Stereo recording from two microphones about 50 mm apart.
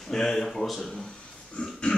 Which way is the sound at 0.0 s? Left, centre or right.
Centre.